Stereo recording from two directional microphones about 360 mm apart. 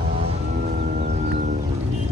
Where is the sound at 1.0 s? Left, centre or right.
Centre.